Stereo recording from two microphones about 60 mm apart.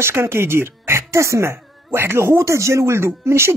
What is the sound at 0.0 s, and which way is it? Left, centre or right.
Speech, right.